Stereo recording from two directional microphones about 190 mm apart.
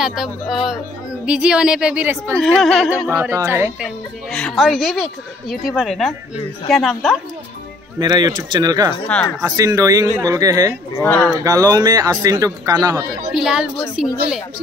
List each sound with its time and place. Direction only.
0.0 s speech: centre (ahead or behind)
3.2 s speech: 15° right (ahead or behind)
4.3 s speech: 5° left (ahead or behind)
8.0 s a man's voice: 20° right (ahead or behind)
9.0 s speech: 5° left (ahead or behind)
9.4 s a man's voice: 20° right (ahead or behind)
11.0 s speech: 10° left (ahead or behind)
11.4 s a man's voice: 20° right (ahead or behind)
13.3 s speech: 5° right (ahead or behind)